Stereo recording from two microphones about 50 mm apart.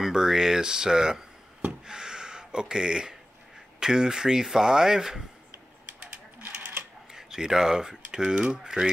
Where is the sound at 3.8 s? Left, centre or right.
Centre.